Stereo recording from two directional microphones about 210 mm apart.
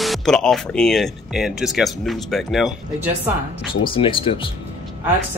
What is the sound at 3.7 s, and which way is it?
Speech, 25° left (ahead or behind).